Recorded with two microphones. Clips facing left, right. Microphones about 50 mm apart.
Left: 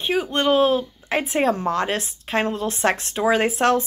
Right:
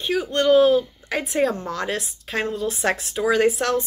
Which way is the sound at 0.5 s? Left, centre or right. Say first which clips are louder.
Right 4 dB; left.